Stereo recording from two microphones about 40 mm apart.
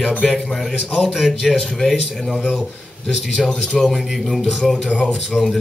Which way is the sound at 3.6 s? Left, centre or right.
Centre.